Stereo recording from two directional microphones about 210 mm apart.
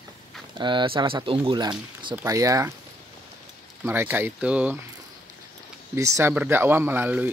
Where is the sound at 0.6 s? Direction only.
20° right (ahead or behind).